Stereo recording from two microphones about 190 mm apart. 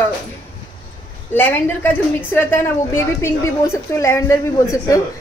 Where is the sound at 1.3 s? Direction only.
10° left (ahead or behind).